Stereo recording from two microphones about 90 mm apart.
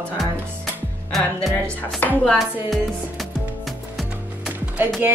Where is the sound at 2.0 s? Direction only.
20° left (ahead or behind).